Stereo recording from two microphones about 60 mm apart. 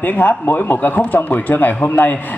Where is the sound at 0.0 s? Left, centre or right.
Left.